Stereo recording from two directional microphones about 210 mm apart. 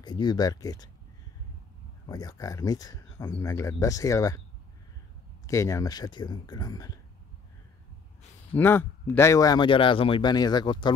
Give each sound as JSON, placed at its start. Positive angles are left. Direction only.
{"t": 0.0, "sound": "speech", "side_deg": 20}
{"t": 2.0, "sound": "speech", "side_deg": 15}
{"t": 5.5, "sound": "speech", "side_deg": 15}
{"t": 8.5, "sound": "speech", "side_deg": 10}